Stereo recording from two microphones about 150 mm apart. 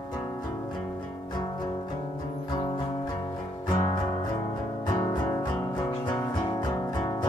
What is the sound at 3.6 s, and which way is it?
Music, 30° left (ahead or behind).